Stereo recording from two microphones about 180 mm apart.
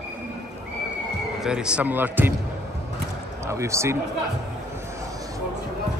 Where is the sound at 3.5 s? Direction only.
15° right (ahead or behind).